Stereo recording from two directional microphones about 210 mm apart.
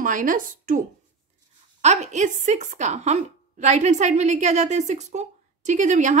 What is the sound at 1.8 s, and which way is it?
A woman's voice, 35° right (ahead or behind).